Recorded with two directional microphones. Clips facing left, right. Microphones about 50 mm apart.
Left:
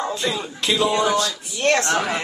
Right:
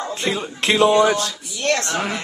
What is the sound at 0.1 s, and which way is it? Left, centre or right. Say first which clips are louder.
Speech: right 1 dB; right.